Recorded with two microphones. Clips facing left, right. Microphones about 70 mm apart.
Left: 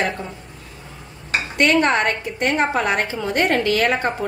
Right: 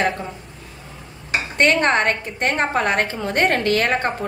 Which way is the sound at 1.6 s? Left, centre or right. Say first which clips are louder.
Even; right.